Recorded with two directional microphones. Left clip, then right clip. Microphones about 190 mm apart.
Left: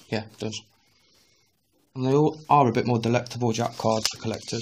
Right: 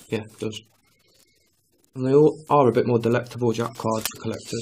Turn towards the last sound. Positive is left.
turn(degrees=35)  # may be behind; listen again after turning